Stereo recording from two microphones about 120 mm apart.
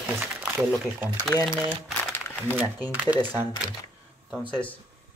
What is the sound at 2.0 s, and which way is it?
Crumpling, 20° left (ahead or behind).